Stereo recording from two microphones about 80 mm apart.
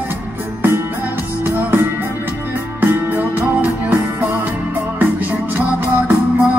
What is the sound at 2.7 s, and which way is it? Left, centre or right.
Music, right.